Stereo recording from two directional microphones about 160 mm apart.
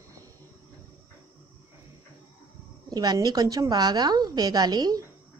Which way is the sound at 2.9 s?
25° right (ahead or behind).